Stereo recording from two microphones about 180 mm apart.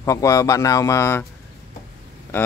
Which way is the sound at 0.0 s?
15° left (ahead or behind).